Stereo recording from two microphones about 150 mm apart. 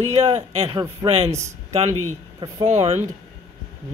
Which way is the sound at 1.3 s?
20° right (ahead or behind).